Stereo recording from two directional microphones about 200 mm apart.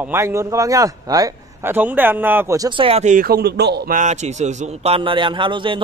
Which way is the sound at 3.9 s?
35° right (ahead or behind).